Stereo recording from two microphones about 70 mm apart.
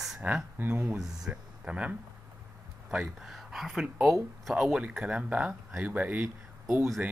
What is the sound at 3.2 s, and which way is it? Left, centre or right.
Speech, centre.